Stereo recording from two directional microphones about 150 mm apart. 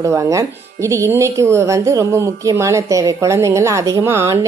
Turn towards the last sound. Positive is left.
turn(degrees=-20)  # may be behind; listen again after turning